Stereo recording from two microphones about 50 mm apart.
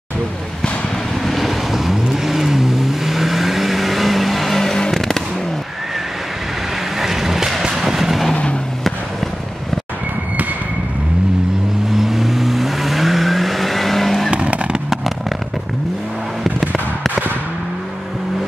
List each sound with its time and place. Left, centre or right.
1.2 s vehicle: centre
7.0 s vehicle: centre
11.9 s vehicle: centre
14.3 s vehicle: right
14.9 s vehicle: centre